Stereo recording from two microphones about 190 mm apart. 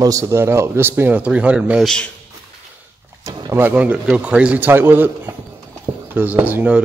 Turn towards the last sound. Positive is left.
turn(degrees=-10)  # may be behind; listen again after turning